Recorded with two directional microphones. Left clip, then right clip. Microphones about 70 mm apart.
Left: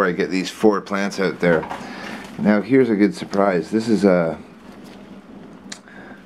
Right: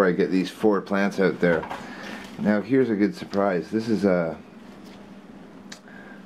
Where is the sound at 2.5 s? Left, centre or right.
Left.